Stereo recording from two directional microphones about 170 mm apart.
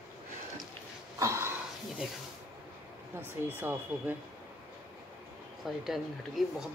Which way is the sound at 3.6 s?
10° right (ahead or behind).